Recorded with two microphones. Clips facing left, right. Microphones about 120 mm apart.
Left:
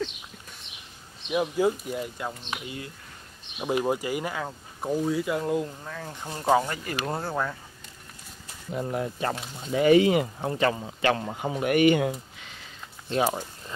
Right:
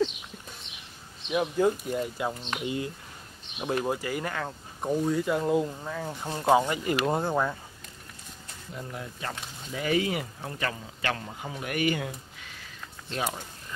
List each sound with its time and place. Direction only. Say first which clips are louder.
1.3 s speech: left 1 dB; 5° left (ahead or behind); by 7.5 s 15° right (ahead or behind)
8.7 s speech: left 10 dB; 50° left (ahead or behind)
9.8 s speech: left 9 dB; 25° left (ahead or behind)
11.2 s speech: left 7 dB; 40° left (ahead or behind)
11.7 s speech: left 8 dB; 25° left (ahead or behind)
13.1 s speech: left 7 dB; 30° left (ahead or behind)